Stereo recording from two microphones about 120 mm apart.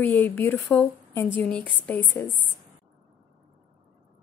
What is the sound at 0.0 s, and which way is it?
Speech, 15° left (ahead or behind).